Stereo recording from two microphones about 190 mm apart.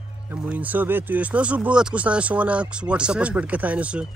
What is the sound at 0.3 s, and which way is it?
Speech, 10° right (ahead or behind).